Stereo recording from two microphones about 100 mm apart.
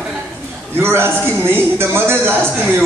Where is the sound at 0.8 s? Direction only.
25° right (ahead or behind).